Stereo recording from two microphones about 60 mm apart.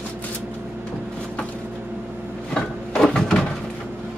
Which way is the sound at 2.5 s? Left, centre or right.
Centre.